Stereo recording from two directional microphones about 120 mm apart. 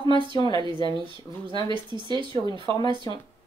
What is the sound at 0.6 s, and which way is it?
Speech, 40° right (ahead or behind).